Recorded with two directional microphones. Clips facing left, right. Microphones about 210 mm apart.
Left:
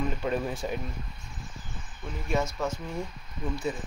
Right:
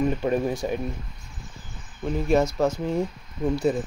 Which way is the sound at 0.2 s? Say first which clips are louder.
Right 6 dB; 15° right (ahead or behind).